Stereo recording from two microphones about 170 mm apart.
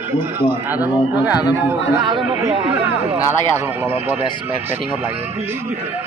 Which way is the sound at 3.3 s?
15° right (ahead or behind).